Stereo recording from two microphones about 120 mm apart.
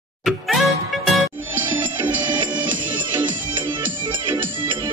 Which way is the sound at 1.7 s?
40° right (ahead or behind).